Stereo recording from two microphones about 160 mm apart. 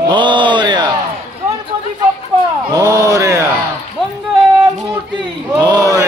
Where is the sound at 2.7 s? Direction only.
20° right (ahead or behind).